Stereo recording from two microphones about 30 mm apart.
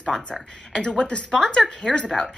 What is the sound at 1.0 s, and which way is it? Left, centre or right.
Speech, left.